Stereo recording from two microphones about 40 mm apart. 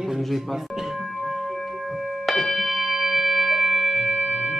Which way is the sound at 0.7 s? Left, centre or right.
Centre.